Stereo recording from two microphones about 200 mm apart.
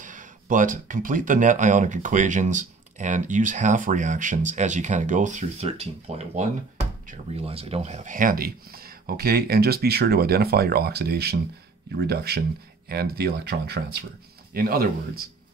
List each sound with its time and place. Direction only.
0.0 s speech: 40° right (ahead or behind)